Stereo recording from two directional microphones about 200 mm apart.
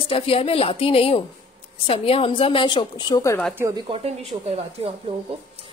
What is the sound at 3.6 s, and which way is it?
Speech, 15° right (ahead or behind).